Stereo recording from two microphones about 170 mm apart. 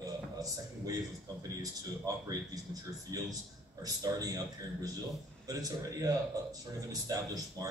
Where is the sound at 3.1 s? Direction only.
25° right (ahead or behind).